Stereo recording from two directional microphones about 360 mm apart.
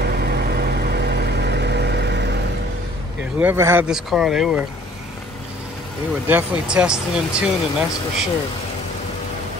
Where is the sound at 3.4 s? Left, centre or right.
Centre.